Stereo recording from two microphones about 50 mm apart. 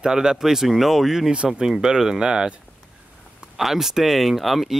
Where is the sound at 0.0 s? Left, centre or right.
Centre.